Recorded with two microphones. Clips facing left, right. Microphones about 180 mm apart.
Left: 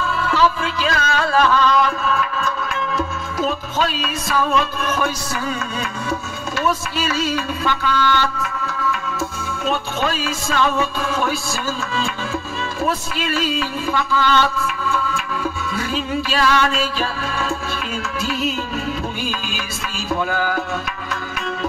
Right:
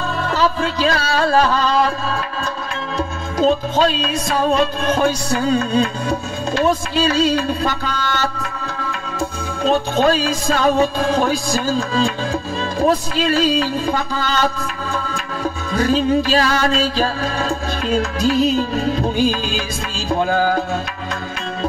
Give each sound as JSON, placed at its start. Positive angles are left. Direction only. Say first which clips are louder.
{"t": 0.0, "sound": "music", "louder": "even", "side_deg": -35}
{"t": 12.8, "sound": "a sound", "louder": "right 6 dB", "side_deg": -35}
{"t": 20.1, "sound": "music", "louder": "right 5 dB", "side_deg": -30}